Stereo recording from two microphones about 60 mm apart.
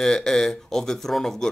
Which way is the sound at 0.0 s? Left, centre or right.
Centre.